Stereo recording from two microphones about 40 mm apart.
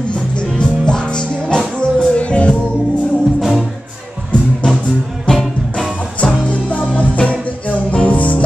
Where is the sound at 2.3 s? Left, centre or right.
Left.